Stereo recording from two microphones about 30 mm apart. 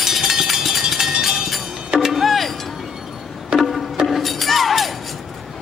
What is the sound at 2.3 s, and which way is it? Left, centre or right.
Music, centre.